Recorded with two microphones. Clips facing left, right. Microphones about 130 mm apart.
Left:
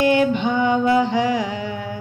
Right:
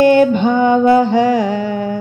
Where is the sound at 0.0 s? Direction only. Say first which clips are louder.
Right 7 dB; 45° right (ahead or behind).